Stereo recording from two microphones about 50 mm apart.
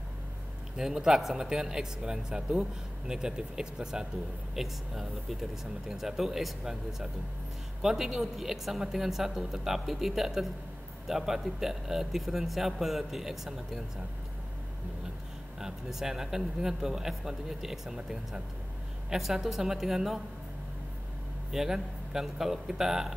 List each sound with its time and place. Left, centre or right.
0.7 s a woman's voice: centre
15.6 s a woman's voice: centre
21.5 s a woman's voice: centre